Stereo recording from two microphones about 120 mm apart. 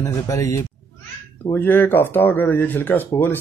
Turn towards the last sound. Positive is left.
turn(degrees=15)  # may be behind; listen again after turning